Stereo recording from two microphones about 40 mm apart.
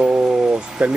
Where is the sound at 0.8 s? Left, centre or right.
Right.